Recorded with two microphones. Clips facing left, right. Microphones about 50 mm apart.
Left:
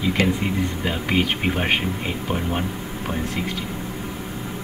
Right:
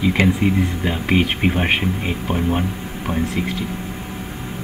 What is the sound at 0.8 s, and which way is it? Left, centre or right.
Speech, centre.